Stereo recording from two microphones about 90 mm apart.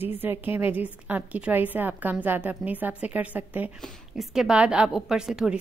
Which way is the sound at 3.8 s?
5° right (ahead or behind).